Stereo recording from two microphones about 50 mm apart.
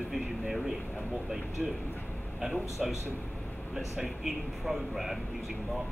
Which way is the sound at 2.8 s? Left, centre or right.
Centre.